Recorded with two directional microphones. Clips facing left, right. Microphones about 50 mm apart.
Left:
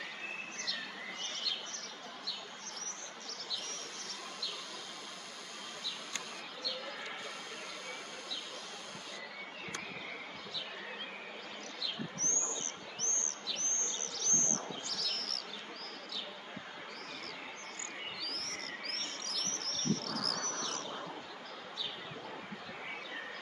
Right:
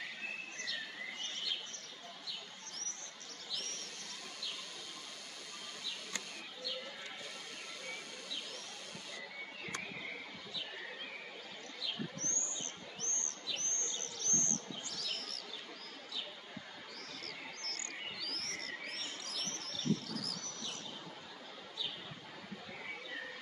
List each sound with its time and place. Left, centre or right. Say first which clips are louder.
12.2 s bird: left 4 dB; left
13.8 s a sound: left 3 dB; right
14.3 s bird: left 1 dB; left
14.9 s bird: left 3 dB; right
15.1 s bee: left 3 dB; centre
18.2 s bird: left 1 dB; centre
18.9 s bird: left 2 dB; centre
20.3 s bird: left 7 dB; left